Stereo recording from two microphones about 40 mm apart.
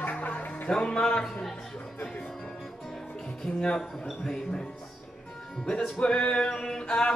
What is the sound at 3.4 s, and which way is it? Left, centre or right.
Music, centre.